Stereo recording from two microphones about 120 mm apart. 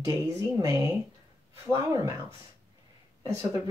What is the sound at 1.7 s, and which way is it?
Speech, 25° right (ahead or behind).